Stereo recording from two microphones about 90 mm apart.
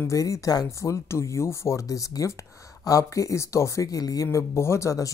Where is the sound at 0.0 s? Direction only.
35° left (ahead or behind).